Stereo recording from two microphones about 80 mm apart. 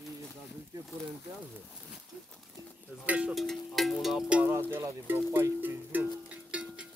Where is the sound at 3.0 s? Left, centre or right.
Centre.